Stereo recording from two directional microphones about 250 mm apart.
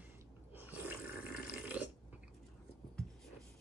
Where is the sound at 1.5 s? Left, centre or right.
Centre.